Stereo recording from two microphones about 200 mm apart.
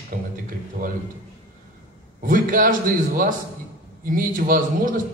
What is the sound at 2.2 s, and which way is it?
A man's voice, 45° right (ahead or behind).